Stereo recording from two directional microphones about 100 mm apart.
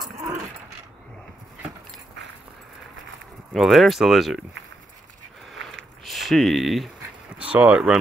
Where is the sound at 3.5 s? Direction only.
Centre (ahead or behind).